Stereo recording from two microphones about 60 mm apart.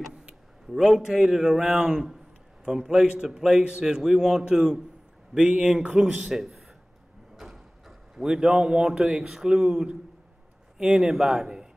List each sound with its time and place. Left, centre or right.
0.7 s a man's voice: centre